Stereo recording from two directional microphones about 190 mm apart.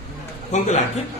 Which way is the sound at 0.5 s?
35° left (ahead or behind).